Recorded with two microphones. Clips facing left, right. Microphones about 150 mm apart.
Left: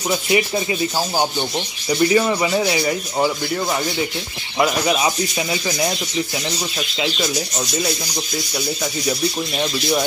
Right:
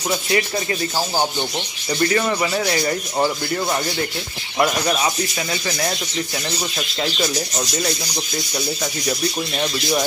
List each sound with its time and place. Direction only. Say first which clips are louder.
0.3 s speech: left 3 dB; 15° left (ahead or behind)
1.9 s speech: left 3 dB; 15° left (ahead or behind)